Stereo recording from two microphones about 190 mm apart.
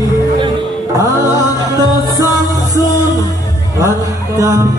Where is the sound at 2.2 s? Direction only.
15° left (ahead or behind).